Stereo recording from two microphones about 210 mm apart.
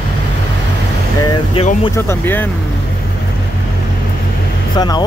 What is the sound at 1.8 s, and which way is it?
Speech, 15° left (ahead or behind).